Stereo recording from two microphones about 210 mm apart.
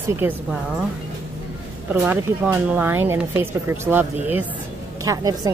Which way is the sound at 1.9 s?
10° right (ahead or behind).